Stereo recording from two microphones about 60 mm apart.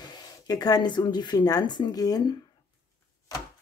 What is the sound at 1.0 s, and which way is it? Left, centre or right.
Speech, left.